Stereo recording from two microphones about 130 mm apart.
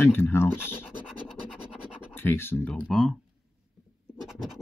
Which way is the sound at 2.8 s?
Centre (ahead or behind).